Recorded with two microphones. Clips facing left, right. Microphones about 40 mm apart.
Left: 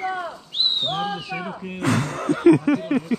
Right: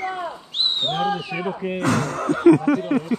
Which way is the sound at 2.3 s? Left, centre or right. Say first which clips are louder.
Right 1 dB; centre.